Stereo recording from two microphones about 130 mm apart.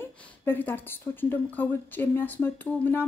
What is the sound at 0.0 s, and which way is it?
Speech, 15° left (ahead or behind).